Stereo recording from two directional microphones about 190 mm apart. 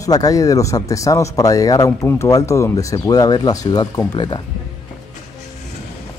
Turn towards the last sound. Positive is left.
turn(degrees=25)  # may be behind; listen again after turning